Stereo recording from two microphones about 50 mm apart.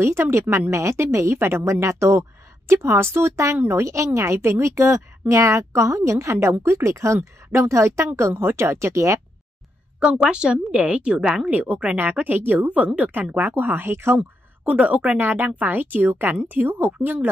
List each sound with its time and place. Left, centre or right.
0.3 s a woman's voice: right
1.7 s speech: right
2.7 s a woman's voice: right
8.4 s a woman's voice: right
9.9 s a woman's voice: centre; by 14.2 s right
14.6 s speech: right